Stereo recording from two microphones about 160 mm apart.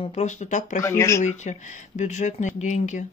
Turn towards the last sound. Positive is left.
turn(degrees=50)  # may be behind; listen again after turning